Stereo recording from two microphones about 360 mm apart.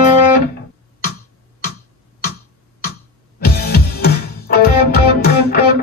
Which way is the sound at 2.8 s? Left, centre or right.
Left.